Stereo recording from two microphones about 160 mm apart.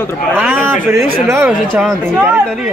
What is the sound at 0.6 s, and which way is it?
Speech, 15° right (ahead or behind).